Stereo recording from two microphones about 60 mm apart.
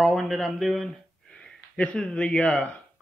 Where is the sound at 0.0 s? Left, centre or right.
Centre.